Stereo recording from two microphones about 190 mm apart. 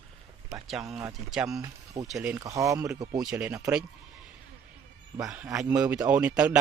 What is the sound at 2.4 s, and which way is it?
Speech, 15° right (ahead or behind).